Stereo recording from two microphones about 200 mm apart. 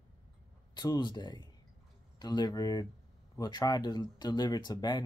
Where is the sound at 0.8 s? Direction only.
20° left (ahead or behind).